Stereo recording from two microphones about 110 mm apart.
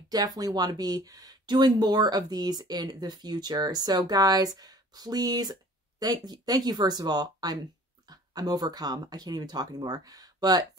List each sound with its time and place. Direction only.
0.1 s speech: 35° right (ahead or behind)